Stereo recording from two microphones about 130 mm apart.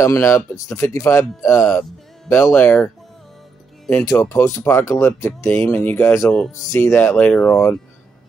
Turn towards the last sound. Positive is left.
turn(degrees=15)  # may be behind; listen again after turning